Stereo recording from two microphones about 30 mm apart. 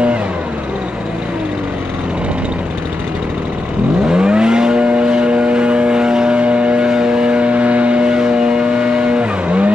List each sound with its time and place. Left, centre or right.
4.1 s vehicle: right
6.4 s vehicle: right
6.9 s vehicle: right
7.3 s vehicle: right
8.1 s vehicle: right